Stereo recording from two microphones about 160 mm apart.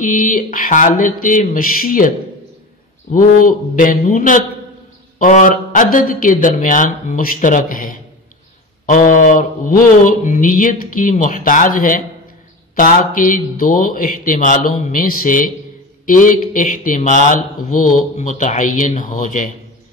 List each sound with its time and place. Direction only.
0.0 s speech: 55° left (ahead or behind)